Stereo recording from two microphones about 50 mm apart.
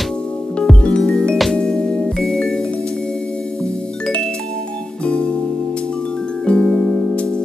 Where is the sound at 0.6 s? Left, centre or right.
Centre.